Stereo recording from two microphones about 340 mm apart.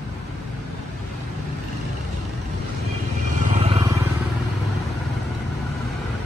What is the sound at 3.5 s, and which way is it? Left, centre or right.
Vehicle, centre.